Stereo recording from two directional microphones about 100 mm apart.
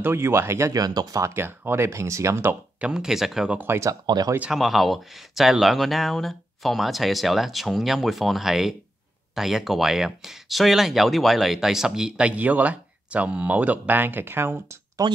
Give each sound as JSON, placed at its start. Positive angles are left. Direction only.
{"t": 0.0, "sound": "speech", "side_deg": -25}
{"t": 2.8, "sound": "speech", "side_deg": -5}
{"t": 3.5, "sound": "speech", "side_deg": -25}
{"t": 4.0, "sound": "speech", "side_deg": -45}
{"t": 4.4, "sound": "speech", "side_deg": 0}
{"t": 15.0, "sound": "speech", "side_deg": -40}